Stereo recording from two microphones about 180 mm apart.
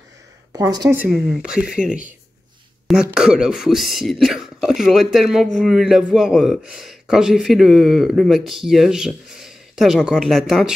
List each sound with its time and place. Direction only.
0.5 s a sound: 20° right (ahead or behind)
0.8 s a man's voice: 10° right (ahead or behind)
3.2 s a man's voice: 5° right (ahead or behind)